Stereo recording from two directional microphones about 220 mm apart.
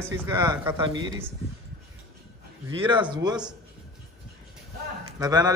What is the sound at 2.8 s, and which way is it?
Speech, 20° right (ahead or behind).